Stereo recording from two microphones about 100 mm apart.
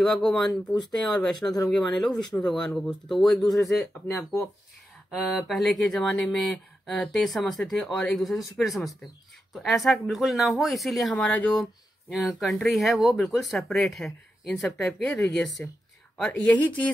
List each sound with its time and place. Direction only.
0.0 s speech: 5° left (ahead or behind)
5.1 s speech: centre (ahead or behind)
11.3 s a woman's voice: 15° left (ahead or behind)
12.1 s a woman's voice: centre (ahead or behind); by 16.9 s 15° left (ahead or behind)